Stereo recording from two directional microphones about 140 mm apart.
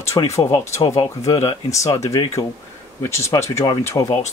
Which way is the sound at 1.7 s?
20° left (ahead or behind).